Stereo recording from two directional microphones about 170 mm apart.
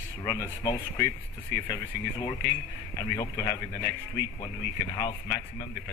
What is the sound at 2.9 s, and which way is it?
Speech, 20° left (ahead or behind).